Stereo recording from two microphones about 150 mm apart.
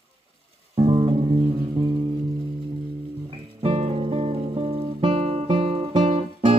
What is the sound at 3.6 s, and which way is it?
Music, 40° right (ahead or behind).